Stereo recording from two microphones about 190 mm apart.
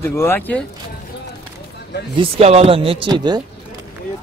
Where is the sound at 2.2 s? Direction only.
35° right (ahead or behind).